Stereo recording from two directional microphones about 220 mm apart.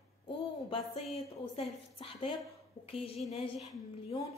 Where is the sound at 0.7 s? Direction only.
25° left (ahead or behind).